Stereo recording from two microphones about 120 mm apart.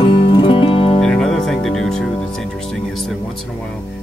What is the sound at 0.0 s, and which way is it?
Music, 45° left (ahead or behind).